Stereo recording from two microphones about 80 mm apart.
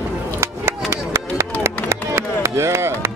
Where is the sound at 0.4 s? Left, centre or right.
Right.